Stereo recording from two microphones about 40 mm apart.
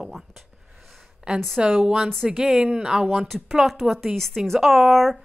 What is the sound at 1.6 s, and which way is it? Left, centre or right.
Speech, centre.